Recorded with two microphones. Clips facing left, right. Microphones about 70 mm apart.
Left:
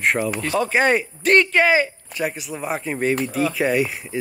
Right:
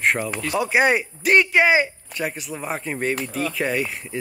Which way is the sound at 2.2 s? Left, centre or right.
Centre.